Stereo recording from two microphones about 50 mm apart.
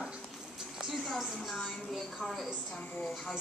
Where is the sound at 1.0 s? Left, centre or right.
Centre.